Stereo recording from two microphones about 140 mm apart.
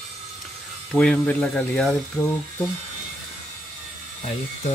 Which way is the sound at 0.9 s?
5° left (ahead or behind).